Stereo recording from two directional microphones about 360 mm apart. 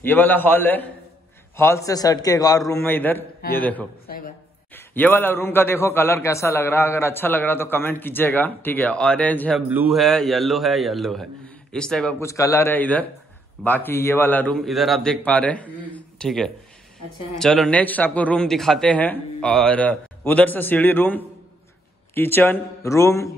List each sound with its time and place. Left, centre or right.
0.0 s a man's voice: centre
4.1 s a woman's voice: left
4.7 s a man's voice: centre